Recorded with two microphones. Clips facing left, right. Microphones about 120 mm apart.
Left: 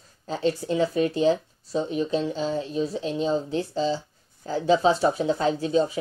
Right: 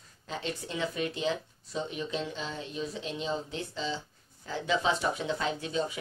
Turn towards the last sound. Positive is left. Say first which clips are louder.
# left 9 dB
turn(degrees=35)  # may be behind; listen again after turning